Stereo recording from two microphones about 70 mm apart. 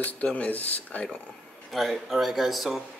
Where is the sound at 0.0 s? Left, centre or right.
Centre.